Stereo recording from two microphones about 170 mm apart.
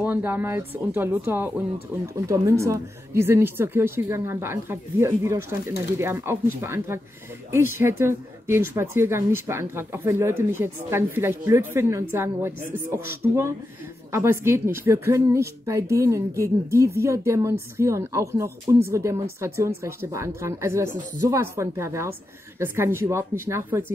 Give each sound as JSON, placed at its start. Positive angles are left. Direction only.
{"t": 0.0, "sound": "speech", "side_deg": -10}